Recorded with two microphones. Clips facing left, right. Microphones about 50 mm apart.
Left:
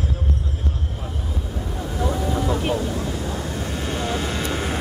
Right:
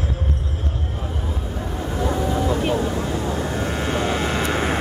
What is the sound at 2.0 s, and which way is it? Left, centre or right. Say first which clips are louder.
Vehicle: right 1 dB; centre.